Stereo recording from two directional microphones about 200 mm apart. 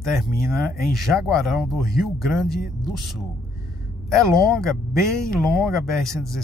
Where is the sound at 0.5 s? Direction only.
Centre (ahead or behind).